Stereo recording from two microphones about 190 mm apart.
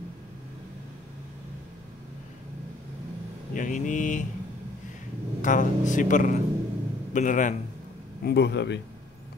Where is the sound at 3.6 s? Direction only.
40° left (ahead or behind).